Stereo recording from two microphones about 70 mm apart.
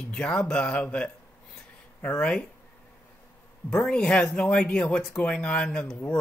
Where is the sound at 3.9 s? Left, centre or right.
Centre.